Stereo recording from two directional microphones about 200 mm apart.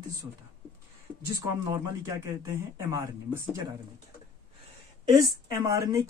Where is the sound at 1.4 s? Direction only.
15° right (ahead or behind).